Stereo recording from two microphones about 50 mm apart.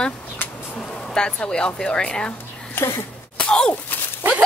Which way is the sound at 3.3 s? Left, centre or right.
Centre.